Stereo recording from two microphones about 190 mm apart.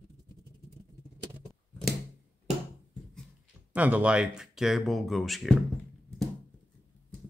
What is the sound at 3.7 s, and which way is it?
Speech, 5° right (ahead or behind).